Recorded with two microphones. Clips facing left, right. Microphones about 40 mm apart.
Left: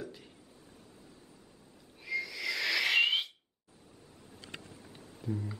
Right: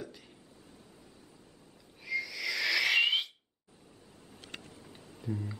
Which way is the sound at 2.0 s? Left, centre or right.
Centre.